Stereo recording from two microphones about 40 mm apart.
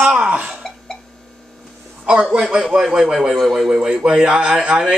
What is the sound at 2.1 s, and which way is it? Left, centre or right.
Speech, right.